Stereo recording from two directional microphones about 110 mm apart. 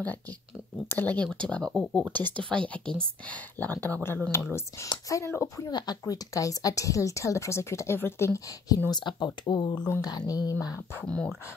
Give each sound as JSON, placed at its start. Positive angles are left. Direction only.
{"t": 0.0, "sound": "a woman's voice", "side_deg": 15}
{"t": 5.7, "sound": "a woman's voice", "side_deg": 40}
{"t": 8.5, "sound": "speech", "side_deg": 35}
{"t": 8.9, "sound": "speech", "side_deg": 45}